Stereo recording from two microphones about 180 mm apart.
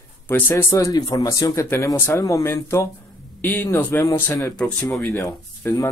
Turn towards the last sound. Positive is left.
turn(degrees=15)  # may be behind; listen again after turning